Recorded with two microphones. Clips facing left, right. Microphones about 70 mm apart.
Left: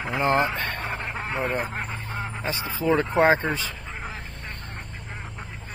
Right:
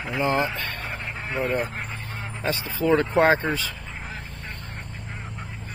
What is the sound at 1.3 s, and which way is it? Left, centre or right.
Speech, left.